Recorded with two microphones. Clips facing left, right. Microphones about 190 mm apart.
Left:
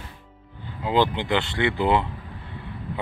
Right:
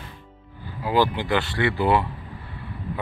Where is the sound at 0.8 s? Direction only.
20° left (ahead or behind).